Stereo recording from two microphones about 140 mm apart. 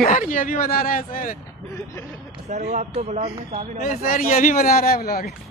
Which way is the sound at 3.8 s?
80° left.